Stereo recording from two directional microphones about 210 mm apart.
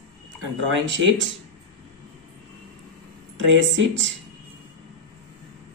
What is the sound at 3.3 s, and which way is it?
Speech, 60° right (ahead or behind).